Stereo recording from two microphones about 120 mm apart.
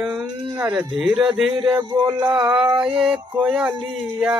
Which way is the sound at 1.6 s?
35° right (ahead or behind).